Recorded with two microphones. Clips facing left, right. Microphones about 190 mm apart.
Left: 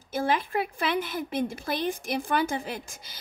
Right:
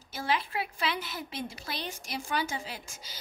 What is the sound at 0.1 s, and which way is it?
A woman's voice, 50° left (ahead or behind).